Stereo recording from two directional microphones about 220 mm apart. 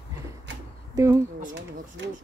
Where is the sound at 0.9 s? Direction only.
15° right (ahead or behind).